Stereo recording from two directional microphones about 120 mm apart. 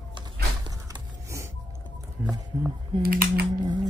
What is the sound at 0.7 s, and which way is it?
Gasp, 30° right (ahead or behind).